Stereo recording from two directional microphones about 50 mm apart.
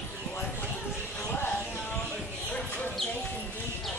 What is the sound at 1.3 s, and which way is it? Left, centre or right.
Music, left.